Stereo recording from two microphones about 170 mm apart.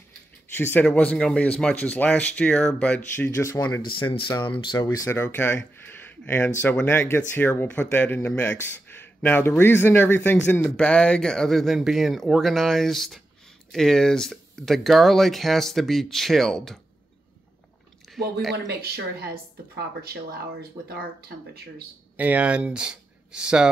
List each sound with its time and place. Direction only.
0.6 s speech: 10° left (ahead or behind)
3.2 s speech: 15° left (ahead or behind)
4.0 s speech: 30° left (ahead or behind); by 5.6 s 15° left (ahead or behind)
5.9 s a sound: 10° left (ahead or behind)
6.6 s speech: 10° left (ahead or behind)
18.7 s speech: 65° right (ahead or behind)
22.1 s speech: 10° right (ahead or behind)